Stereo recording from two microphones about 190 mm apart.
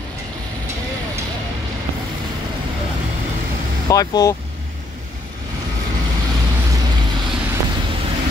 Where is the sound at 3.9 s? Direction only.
20° left (ahead or behind).